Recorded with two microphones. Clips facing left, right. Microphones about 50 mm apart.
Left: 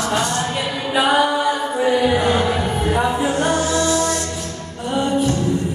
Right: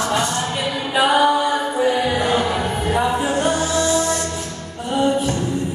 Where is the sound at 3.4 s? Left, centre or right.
Left.